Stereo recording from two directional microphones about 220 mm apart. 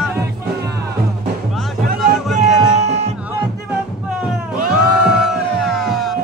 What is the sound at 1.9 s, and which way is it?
Music, centre (ahead or behind).